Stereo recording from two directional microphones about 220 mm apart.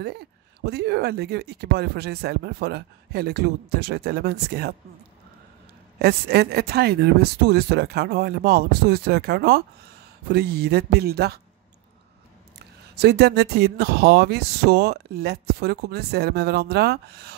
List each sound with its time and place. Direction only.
0.0 s speech: 45° right (ahead or behind)
5.9 s speech: 45° right (ahead or behind)
12.5 s speech: 45° right (ahead or behind)